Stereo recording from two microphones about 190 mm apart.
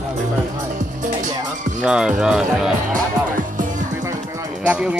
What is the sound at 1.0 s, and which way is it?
Music, 40° right (ahead or behind).